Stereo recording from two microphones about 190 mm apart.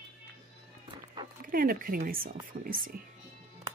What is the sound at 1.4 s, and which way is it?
Speech, 50° right (ahead or behind).